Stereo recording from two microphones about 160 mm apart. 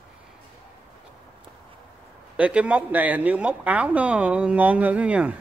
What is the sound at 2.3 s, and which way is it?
Speech, 5° right (ahead or behind).